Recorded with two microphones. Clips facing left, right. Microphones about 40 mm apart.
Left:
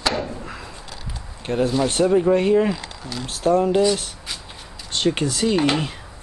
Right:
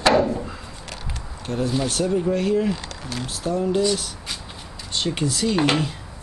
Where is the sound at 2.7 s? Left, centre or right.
Right.